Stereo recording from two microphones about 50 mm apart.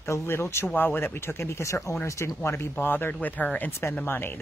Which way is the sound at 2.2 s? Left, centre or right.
Left.